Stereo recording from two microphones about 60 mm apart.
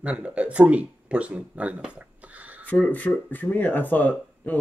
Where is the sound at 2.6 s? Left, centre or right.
Left.